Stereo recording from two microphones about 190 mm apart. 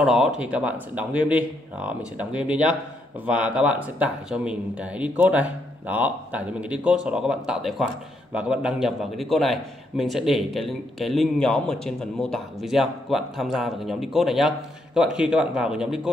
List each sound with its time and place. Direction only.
0.0 s a man's voice: centre (ahead or behind)